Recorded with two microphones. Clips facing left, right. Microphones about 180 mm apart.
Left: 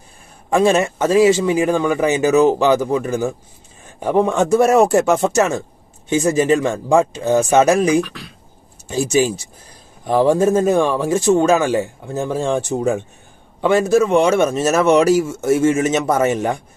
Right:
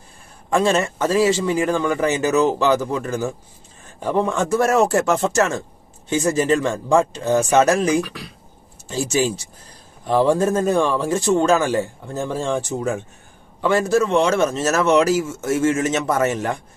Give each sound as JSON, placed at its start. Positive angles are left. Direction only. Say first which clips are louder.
{"t": 0.5, "sound": "speech", "louder": "left 4 dB", "side_deg": 15}
{"t": 13.6, "sound": "speech", "louder": "left 3 dB", "side_deg": 15}